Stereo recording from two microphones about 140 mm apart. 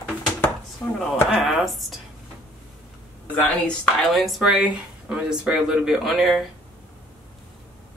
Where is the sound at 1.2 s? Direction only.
Centre (ahead or behind).